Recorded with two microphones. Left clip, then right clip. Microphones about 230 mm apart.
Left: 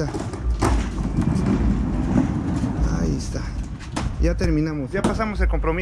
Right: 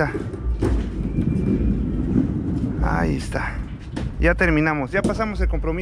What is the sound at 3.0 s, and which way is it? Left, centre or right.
Speech, right.